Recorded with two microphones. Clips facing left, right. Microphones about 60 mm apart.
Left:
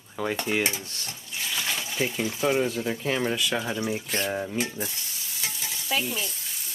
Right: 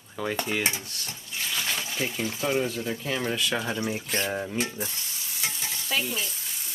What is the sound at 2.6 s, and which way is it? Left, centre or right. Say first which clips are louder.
Speech: left 2 dB; left.